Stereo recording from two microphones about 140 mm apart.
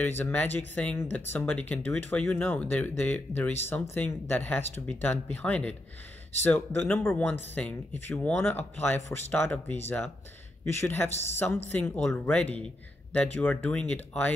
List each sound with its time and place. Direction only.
0.2 s speech: 10° left (ahead or behind)